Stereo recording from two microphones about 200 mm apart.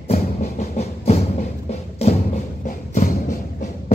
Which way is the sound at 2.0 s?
30° left (ahead or behind).